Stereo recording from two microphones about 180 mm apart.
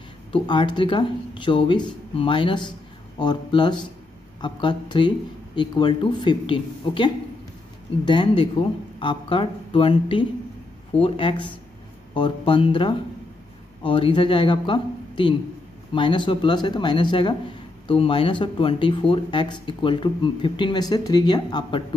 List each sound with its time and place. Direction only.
0.3 s speech: 25° left (ahead or behind)
8.1 s speech: 25° left (ahead or behind)